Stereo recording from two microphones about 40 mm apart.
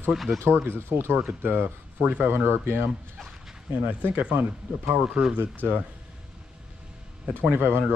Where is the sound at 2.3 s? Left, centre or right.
Right.